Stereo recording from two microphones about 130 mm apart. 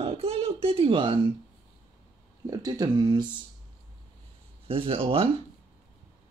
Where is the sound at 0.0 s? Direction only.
50° right (ahead or behind).